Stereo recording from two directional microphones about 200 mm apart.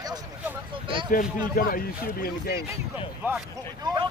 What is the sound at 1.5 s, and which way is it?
Speech, 45° left (ahead or behind).